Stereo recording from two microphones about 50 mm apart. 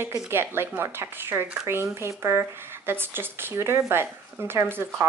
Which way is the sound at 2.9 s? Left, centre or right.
Right.